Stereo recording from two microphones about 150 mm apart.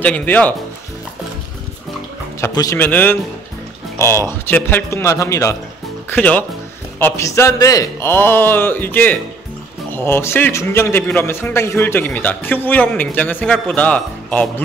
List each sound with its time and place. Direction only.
0.0 s a man's voice: 10° left (ahead or behind)
2.4 s a man's voice: 20° left (ahead or behind)